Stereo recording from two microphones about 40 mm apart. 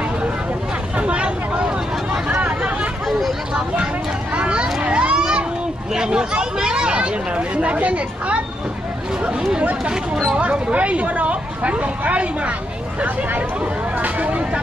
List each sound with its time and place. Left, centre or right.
0.9 s a sound: right
4.4 s a sound: right
5.9 s hubbub: centre
9.2 s speech: centre
10.4 s speech: right
13.9 s vehicle: right